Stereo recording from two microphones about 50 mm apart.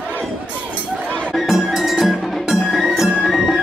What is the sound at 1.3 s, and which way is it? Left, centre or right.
Music, centre.